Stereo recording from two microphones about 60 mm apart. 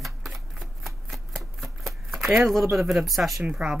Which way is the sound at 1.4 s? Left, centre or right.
Centre.